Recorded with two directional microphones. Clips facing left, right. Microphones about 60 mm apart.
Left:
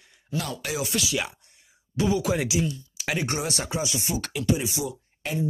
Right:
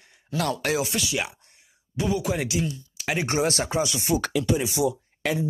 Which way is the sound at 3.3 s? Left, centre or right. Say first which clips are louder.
Right 5 dB; right.